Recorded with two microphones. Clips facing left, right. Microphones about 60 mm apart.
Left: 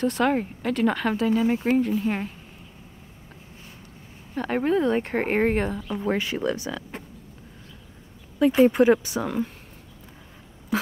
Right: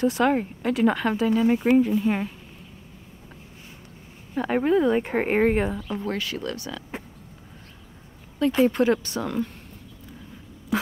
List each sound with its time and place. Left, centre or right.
0.0 s speech: centre
4.4 s speech: centre
6.0 s speech: centre
8.5 s speech: centre